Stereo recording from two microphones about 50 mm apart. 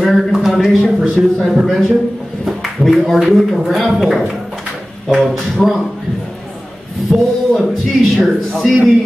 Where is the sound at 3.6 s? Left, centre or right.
Centre.